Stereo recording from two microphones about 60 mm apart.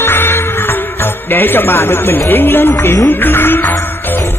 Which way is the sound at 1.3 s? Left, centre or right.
Left.